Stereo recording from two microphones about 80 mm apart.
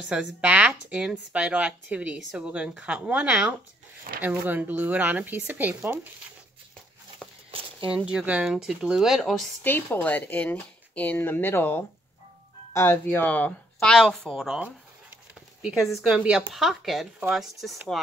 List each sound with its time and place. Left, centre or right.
0.0 s speech: centre
7.2 s a sound: centre
7.9 s speech: centre
9.6 s speech: left; by 14.6 s centre
15.9 s speech: centre